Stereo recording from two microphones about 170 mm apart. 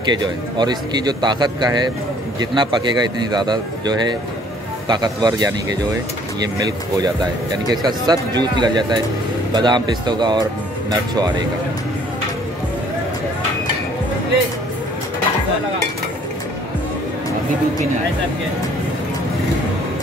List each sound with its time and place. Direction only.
0.0 s a man's voice: 25° right (ahead or behind)